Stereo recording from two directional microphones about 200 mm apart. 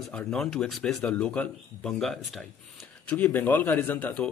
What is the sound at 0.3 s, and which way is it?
Speech, 5° left (ahead or behind).